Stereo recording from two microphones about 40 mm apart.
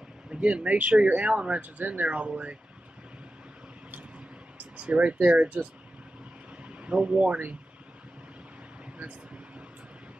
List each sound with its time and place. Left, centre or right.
0.3 s speech: right
0.7 s speech: right
4.7 s speech: right
6.8 s speech: right